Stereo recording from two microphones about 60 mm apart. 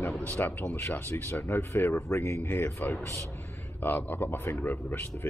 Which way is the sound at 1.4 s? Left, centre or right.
Left.